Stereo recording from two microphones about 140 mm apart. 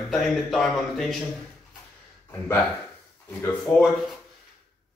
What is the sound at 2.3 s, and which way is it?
A man's voice, 15° left (ahead or behind).